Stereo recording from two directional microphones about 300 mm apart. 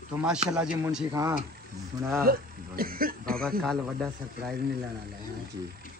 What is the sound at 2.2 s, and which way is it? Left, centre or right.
Speech, right.